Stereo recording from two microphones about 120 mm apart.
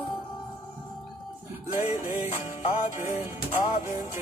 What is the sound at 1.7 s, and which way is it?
Music, 20° right (ahead or behind).